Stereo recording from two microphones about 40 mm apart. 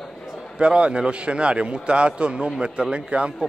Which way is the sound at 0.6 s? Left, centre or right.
Right.